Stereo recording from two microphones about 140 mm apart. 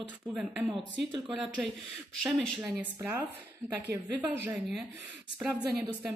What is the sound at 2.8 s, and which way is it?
Speech, 15° right (ahead or behind).